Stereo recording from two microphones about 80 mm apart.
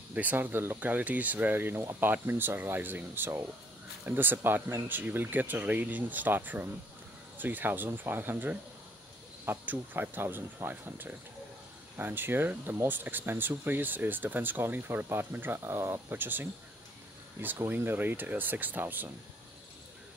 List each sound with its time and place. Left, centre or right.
0.1 s speech: right
17.6 s speech: right